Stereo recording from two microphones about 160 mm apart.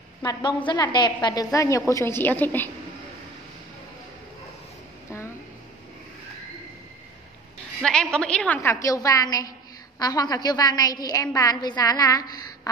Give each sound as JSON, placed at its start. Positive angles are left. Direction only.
{"t": 0.2, "sound": "a woman's voice", "side_deg": 25}
{"t": 7.8, "sound": "a woman's voice", "side_deg": 5}